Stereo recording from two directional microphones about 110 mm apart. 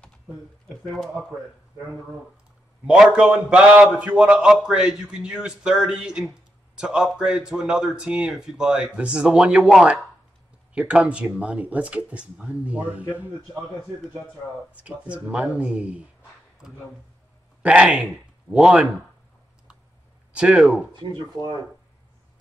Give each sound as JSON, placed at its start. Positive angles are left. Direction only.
{"t": 0.8, "sound": "speech", "side_deg": 0}
{"t": 2.9, "sound": "a man's voice", "side_deg": -10}
{"t": 14.7, "sound": "a man's voice", "side_deg": -10}
{"t": 20.3, "sound": "speech", "side_deg": -5}
{"t": 20.9, "sound": "speech", "side_deg": -45}